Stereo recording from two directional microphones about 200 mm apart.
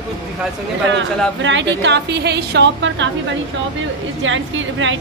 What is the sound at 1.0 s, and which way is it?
A woman's voice, 65° right (ahead or behind).